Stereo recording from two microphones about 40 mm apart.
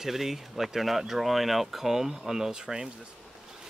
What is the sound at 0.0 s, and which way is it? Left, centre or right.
Speech, centre.